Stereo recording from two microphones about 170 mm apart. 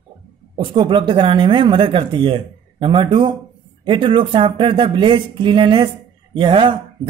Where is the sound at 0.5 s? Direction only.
30° right (ahead or behind).